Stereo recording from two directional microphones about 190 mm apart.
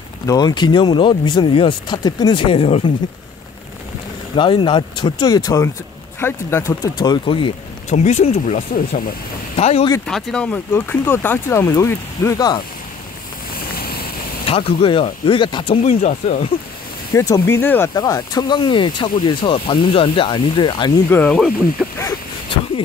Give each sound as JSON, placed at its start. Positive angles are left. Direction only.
{"t": 0.3, "sound": "speech", "side_deg": 20}
{"t": 4.4, "sound": "speech", "side_deg": 25}
{"t": 10.0, "sound": "speech", "side_deg": 0}
{"t": 13.7, "sound": "vehicle", "side_deg": 55}
{"t": 14.4, "sound": "speech", "side_deg": 30}
{"t": 17.1, "sound": "speech", "side_deg": 15}
{"t": 21.1, "sound": "speech", "side_deg": 5}
{"t": 21.9, "sound": "a sound", "side_deg": 20}